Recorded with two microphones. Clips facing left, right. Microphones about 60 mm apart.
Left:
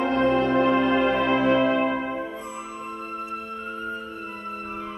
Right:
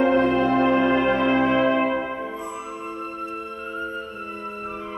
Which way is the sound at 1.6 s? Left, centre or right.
Right.